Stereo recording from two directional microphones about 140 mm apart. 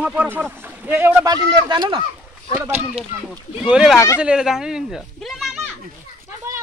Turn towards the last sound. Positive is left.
turn(degrees=-20)  # may be behind; listen again after turning